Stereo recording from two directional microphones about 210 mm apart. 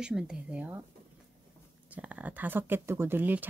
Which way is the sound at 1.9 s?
5° right (ahead or behind).